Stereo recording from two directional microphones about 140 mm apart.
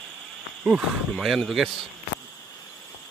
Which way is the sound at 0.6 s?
5° right (ahead or behind).